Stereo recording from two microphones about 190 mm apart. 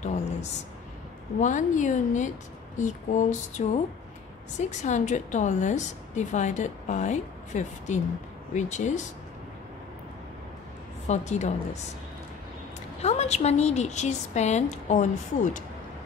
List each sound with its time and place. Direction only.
0.0 s a woman's voice: 35° left (ahead or behind)
11.1 s a woman's voice: 35° left (ahead or behind)
13.0 s a woman's voice: 35° left (ahead or behind)